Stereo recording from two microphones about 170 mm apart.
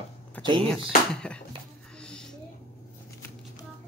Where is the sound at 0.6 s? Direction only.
5° left (ahead or behind).